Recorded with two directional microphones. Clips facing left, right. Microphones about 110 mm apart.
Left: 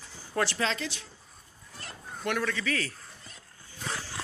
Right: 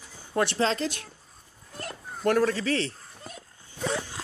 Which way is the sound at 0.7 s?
40° right (ahead or behind).